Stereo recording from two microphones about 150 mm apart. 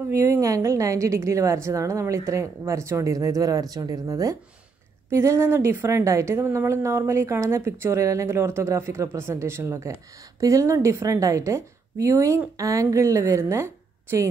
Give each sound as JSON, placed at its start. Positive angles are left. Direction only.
{"t": 0.1, "sound": "a woman's voice", "side_deg": -15}